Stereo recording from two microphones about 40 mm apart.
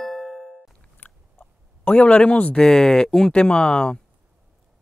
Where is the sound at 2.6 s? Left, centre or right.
Centre.